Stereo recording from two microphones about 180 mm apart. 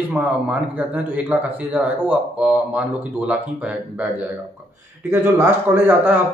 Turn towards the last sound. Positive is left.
turn(degrees=-10)  # may be behind; listen again after turning